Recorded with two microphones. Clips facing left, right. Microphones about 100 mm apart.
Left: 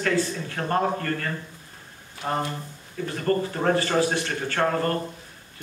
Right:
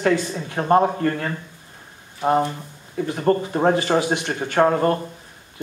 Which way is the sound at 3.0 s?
20° right (ahead or behind).